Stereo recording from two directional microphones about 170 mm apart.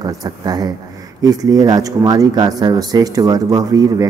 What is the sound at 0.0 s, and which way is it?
A man's voice, 20° right (ahead or behind).